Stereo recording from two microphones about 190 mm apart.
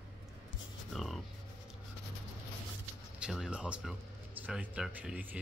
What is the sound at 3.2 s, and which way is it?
Speech, 5° right (ahead or behind).